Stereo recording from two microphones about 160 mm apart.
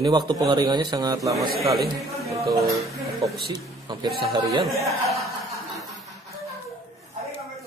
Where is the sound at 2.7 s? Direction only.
20° right (ahead or behind).